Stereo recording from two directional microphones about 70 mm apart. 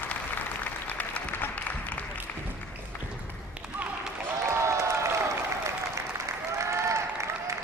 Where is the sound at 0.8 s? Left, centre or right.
Left.